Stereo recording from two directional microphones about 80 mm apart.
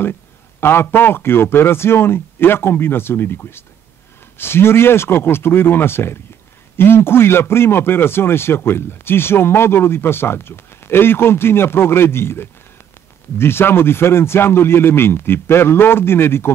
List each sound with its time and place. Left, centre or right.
0.6 s a man's voice: left